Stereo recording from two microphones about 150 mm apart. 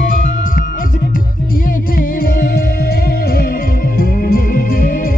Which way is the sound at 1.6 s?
75° left (ahead or behind).